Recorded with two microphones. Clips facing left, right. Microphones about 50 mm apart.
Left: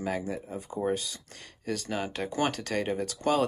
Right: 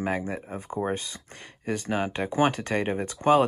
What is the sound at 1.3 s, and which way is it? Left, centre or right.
Speech, right.